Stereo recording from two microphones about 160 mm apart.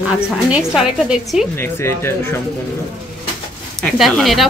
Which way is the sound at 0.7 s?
5° right (ahead or behind).